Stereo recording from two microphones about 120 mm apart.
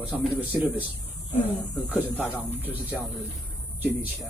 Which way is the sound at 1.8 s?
15° right (ahead or behind).